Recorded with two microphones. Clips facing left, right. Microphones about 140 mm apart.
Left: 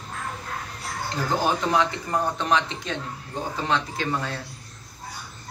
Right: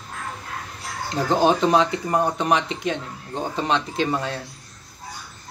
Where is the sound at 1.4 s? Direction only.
20° right (ahead or behind).